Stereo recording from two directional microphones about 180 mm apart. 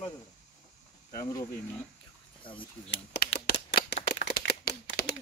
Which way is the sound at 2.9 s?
70° left (ahead or behind).